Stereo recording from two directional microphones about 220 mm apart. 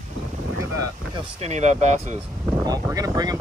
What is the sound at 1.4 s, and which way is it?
Speech, 30° right (ahead or behind).